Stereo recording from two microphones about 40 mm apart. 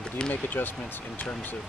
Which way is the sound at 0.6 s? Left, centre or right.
Left.